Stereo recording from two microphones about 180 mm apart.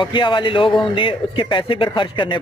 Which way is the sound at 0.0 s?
25° left (ahead or behind).